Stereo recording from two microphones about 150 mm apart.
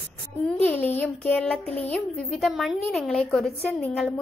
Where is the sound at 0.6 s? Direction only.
10° left (ahead or behind).